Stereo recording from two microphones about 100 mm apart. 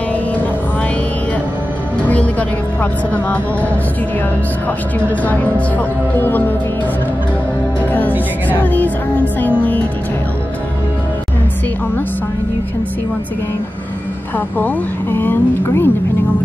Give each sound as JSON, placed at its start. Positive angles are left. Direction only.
{"t": 2.0, "sound": "music", "side_deg": 15}
{"t": 5.2, "sound": "speech", "side_deg": 15}
{"t": 8.5, "sound": "speech", "side_deg": 15}
{"t": 14.6, "sound": "speech", "side_deg": 20}